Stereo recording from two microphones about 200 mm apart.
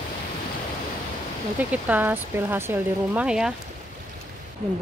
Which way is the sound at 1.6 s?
10° right (ahead or behind).